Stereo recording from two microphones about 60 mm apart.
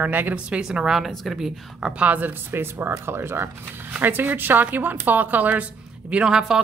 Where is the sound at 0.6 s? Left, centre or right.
Centre.